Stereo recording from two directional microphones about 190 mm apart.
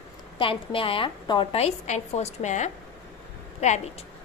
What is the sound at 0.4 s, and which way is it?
A woman's voice, 25° left (ahead or behind).